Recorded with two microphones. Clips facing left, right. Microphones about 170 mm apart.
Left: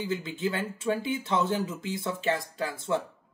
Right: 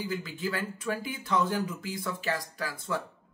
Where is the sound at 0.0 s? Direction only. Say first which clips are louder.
Left 3 dB; 25° left (ahead or behind).